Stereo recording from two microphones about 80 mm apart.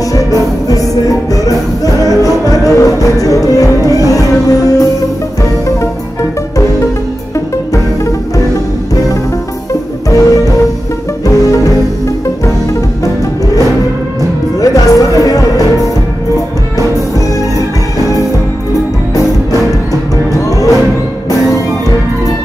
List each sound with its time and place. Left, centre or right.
0.7 s music: left
7.3 s music: left
10.0 s music: left
14.6 s music: left
17.6 s music: left